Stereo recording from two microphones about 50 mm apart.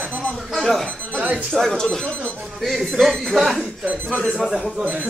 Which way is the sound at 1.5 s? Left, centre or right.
Centre.